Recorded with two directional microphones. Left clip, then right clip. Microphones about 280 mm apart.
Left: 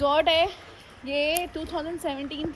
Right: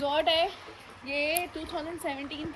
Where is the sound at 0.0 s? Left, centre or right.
Centre.